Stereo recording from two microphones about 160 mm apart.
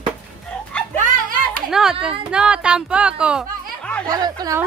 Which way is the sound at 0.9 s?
55° right (ahead or behind).